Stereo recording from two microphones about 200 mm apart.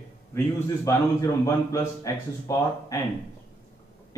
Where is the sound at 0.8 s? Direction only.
15° left (ahead or behind).